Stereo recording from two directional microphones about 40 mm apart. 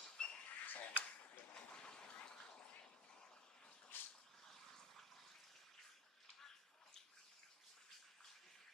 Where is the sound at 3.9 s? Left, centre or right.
Left.